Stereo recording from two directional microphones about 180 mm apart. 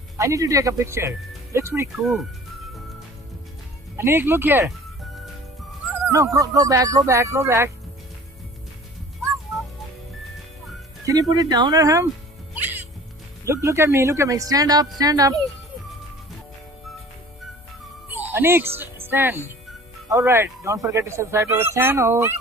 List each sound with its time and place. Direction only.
0.2 s speech: 15° right (ahead or behind)
3.9 s speech: 15° right (ahead or behind)
5.0 s music: centre (ahead or behind)
5.9 s speech: 15° right (ahead or behind)
11.1 s speech: 20° right (ahead or behind)
12.5 s music: 10° right (ahead or behind)
13.5 s speech: 15° right (ahead or behind)
18.0 s music: 10° right (ahead or behind)
20.1 s speech: 15° right (ahead or behind)